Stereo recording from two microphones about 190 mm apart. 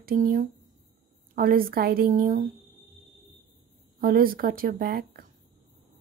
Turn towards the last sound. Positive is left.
turn(degrees=-55)  # may be behind; listen again after turning